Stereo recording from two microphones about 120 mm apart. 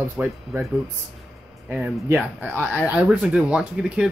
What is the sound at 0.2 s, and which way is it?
Speech, 15° right (ahead or behind).